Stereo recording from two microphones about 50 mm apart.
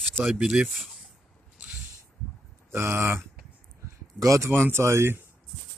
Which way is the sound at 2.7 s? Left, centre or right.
Right.